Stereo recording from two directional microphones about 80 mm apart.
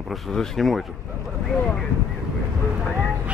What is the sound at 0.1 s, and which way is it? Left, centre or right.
Speech, centre.